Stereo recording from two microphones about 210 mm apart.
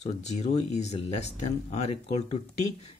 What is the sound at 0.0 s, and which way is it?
Speech, 30° left (ahead or behind).